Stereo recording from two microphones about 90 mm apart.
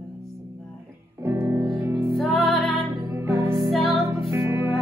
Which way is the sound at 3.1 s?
30° right (ahead or behind).